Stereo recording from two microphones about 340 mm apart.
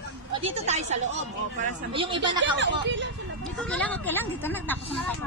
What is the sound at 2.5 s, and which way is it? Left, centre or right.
Speech, right.